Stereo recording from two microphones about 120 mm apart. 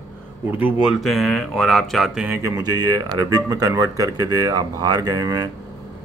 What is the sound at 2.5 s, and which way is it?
Speech, 35° right (ahead or behind).